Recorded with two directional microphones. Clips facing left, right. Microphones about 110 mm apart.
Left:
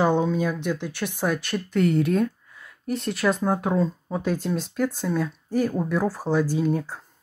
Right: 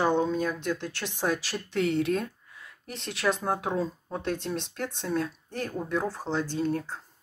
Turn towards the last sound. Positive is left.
turn(degrees=10)  # may be behind; listen again after turning